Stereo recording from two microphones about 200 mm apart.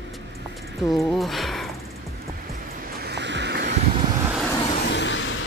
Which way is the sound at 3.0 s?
55° right (ahead or behind).